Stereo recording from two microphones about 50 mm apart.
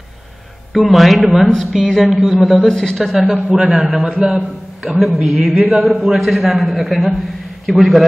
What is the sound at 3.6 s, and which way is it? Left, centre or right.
Speech, right.